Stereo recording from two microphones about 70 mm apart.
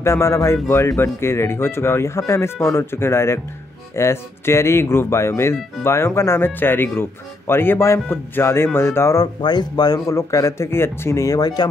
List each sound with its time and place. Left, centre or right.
0.0 s speech: left
9.1 s speech: left
10.0 s speech: left
11.2 s speech: left